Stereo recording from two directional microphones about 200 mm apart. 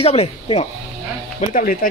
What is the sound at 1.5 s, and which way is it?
Speech, 45° left (ahead or behind).